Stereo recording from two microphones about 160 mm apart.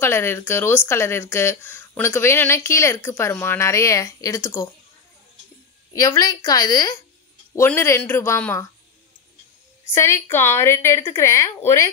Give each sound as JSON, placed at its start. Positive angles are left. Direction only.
{"t": 0.0, "sound": "speech", "side_deg": 15}
{"t": 5.9, "sound": "a woman's voice", "side_deg": 25}
{"t": 9.9, "sound": "speech", "side_deg": 15}